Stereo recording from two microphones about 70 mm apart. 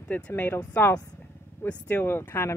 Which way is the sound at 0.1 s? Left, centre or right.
Left.